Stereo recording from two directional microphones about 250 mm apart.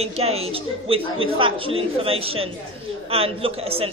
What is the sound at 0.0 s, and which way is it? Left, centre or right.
A man's voice, right.